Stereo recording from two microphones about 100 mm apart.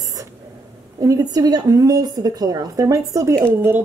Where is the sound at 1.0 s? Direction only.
35° right (ahead or behind).